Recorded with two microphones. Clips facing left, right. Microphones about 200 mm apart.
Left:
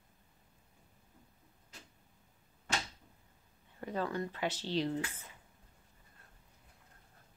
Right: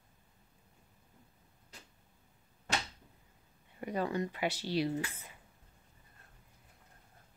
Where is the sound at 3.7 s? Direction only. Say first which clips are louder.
Right 2 dB; 10° right (ahead or behind).